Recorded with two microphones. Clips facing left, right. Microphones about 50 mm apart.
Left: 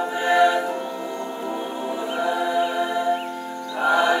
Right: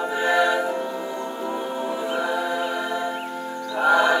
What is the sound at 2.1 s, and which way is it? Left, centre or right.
Music, centre.